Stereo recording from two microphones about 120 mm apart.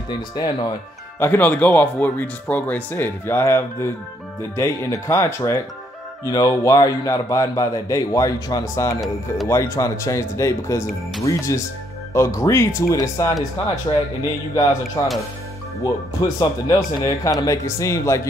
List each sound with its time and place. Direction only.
0.1 s speech: 40° left (ahead or behind)
1.2 s a man's voice: 15° left (ahead or behind)
13.9 s speech: 40° left (ahead or behind)
14.5 s a man's voice: 30° left (ahead or behind)